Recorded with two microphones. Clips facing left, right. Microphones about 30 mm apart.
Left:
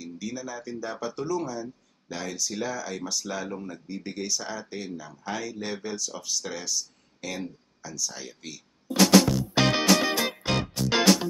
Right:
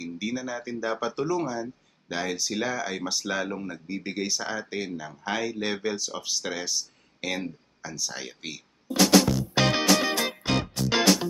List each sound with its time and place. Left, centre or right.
0.0 s speech: right
8.8 s music: centre